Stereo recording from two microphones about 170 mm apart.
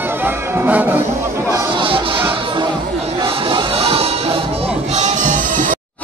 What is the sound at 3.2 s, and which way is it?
Music, 25° right (ahead or behind).